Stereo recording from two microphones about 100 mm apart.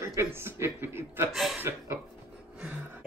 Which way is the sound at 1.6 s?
25° right (ahead or behind).